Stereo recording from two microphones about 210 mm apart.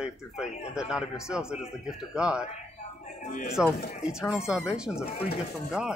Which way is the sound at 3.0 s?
35° left (ahead or behind).